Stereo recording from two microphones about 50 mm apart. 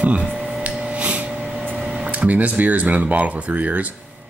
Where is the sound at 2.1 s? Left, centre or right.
Right.